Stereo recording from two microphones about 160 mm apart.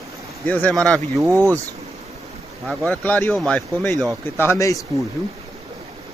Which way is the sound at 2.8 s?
10° left (ahead or behind).